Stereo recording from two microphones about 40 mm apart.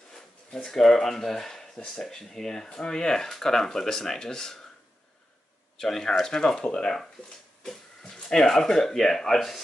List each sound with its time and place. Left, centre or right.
0.7 s speech: centre
5.8 s speech: centre